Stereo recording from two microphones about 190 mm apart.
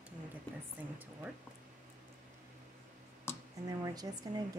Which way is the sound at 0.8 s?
10° right (ahead or behind).